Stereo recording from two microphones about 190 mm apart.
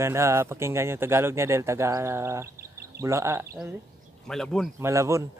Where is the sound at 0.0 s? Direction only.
15° right (ahead or behind).